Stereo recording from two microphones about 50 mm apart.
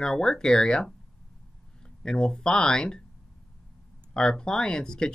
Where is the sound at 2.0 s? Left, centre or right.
Centre.